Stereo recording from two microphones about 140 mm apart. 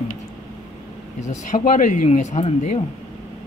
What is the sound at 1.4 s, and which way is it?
Speech, 65° left (ahead or behind).